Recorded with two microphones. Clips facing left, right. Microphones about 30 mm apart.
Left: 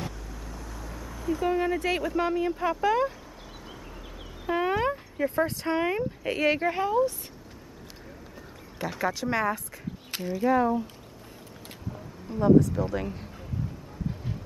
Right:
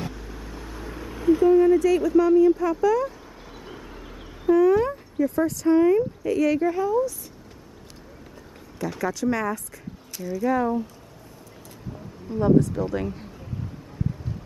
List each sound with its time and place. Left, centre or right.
0.0 s vehicle: right
1.6 s speech: left
4.5 s dog: left
5.2 s speech: left
8.8 s speech: left
10.5 s speech: centre
11.9 s speech: centre